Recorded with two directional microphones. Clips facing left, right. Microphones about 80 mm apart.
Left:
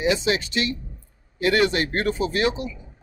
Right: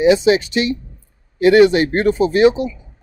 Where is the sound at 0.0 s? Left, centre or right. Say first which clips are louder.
Right 10 dB; centre.